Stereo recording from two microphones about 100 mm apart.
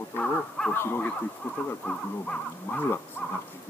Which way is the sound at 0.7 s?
20° left (ahead or behind).